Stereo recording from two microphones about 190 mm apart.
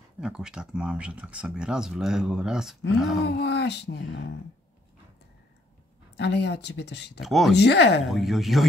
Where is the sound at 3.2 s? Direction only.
65° left (ahead or behind).